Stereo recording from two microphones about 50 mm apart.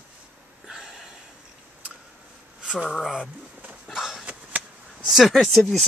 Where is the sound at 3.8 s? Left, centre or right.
Centre.